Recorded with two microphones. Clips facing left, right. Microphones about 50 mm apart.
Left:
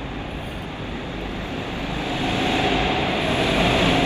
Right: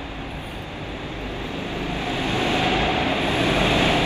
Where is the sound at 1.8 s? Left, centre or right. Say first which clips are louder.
Left 1 dB; right.